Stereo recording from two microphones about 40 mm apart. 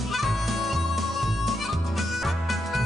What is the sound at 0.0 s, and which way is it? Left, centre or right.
Music, centre.